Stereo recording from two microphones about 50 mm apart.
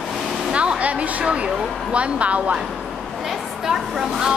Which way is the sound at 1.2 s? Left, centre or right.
Right.